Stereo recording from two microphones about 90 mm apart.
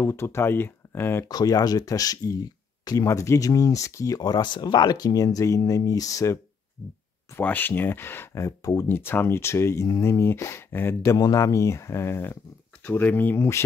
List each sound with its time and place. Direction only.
0.0 s speech: 30° left (ahead or behind)
1.3 s speech: 45° left (ahead or behind)
3.1 s speech: 35° left (ahead or behind)
4.2 s speech: 55° left (ahead or behind); by 6.4 s 35° left (ahead or behind)
7.3 s speech: 20° left (ahead or behind); by 8.8 s 35° left (ahead or behind)
8.8 s speech: 25° left (ahead or behind)
11.0 s speech: 45° left (ahead or behind); by 13.6 s 25° left (ahead or behind)